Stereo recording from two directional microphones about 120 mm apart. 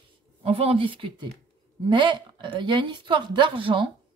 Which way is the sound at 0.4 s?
55° right (ahead or behind).